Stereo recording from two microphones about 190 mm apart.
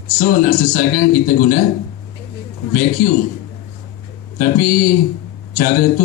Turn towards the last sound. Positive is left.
turn(degrees=45)  # may be behind; listen again after turning